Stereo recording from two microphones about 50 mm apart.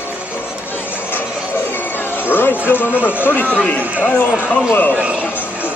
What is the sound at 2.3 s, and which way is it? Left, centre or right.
Speech, left.